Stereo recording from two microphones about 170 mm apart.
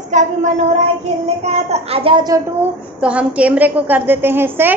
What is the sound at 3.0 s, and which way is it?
A woman's voice, 5° right (ahead or behind).